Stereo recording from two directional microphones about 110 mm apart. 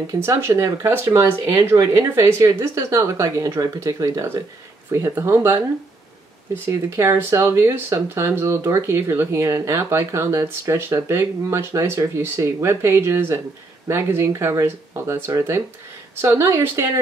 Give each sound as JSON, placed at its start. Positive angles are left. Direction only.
{"t": 0.0, "sound": "speech", "side_deg": -25}
{"t": 6.7, "sound": "speech", "side_deg": -25}